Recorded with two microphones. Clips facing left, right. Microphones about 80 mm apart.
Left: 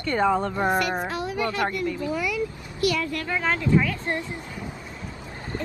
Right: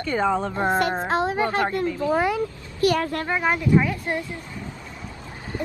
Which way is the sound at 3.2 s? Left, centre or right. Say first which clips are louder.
Right 3 dB; right.